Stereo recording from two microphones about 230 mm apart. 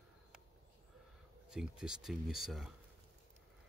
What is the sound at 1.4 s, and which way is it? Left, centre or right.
Speech, centre.